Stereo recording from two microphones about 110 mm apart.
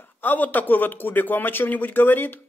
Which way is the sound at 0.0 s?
15° left (ahead or behind).